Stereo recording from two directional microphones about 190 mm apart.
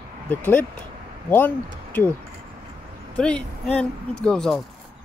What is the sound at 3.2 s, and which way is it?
Speech, 5° left (ahead or behind).